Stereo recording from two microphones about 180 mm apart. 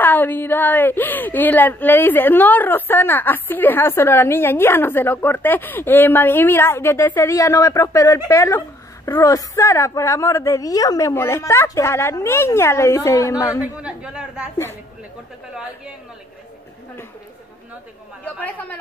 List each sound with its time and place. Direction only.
0.0 s a woman's voice: 10° left (ahead or behind)
13.6 s a woman's voice: 5° right (ahead or behind)
18.4 s a woman's voice: 10° left (ahead or behind)